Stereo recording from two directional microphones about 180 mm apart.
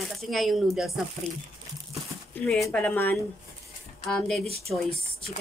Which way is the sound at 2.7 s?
10° left (ahead or behind).